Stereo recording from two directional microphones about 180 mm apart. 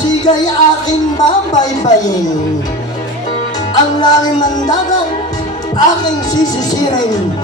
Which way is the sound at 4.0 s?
25° left (ahead or behind).